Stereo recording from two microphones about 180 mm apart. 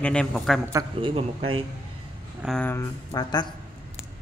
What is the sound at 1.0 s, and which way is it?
Speech, 30° right (ahead or behind).